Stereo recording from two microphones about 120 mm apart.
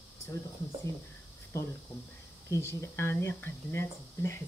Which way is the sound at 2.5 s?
20° left (ahead or behind).